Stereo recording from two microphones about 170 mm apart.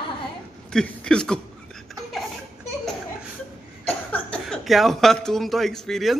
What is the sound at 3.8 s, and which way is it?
Speech, 10° left (ahead or behind).